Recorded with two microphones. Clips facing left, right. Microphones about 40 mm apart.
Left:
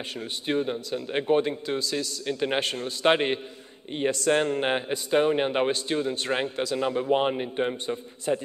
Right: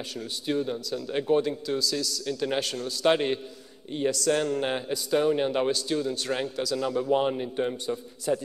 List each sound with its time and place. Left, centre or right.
0.1 s a man's voice: left